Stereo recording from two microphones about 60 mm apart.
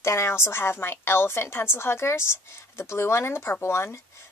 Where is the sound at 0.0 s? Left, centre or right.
Left.